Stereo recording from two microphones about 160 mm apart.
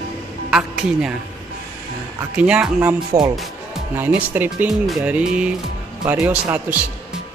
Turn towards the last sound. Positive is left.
turn(degrees=-10)  # may be behind; listen again after turning